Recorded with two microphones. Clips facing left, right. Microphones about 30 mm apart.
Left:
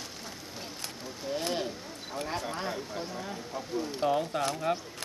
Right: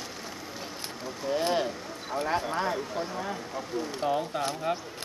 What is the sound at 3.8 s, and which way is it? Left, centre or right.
Speech, centre.